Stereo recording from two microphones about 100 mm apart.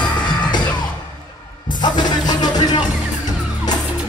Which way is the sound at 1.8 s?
45° left (ahead or behind).